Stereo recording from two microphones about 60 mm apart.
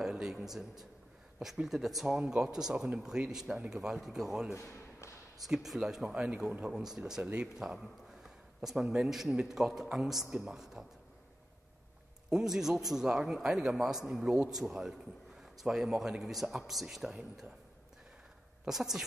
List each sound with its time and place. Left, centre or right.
0.0 s a man's voice: centre
4.5 s a sound: left
5.5 s speech: centre
6.0 s a man's voice: centre
12.3 s a man's voice: centre
18.7 s speech: centre